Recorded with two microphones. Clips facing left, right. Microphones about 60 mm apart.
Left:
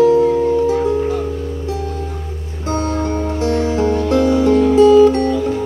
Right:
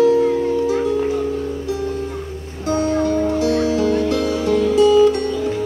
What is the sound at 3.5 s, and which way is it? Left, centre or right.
Music, left.